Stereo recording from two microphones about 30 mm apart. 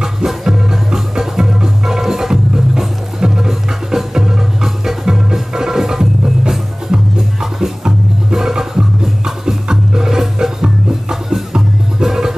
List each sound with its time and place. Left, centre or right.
0.3 s music: centre